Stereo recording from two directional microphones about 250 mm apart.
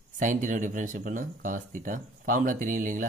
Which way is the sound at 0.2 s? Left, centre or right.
Right.